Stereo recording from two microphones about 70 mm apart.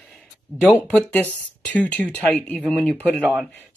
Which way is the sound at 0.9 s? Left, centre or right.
Centre.